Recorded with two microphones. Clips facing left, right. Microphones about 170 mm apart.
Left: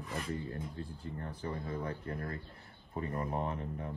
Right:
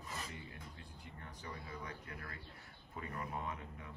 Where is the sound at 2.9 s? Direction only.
35° left (ahead or behind).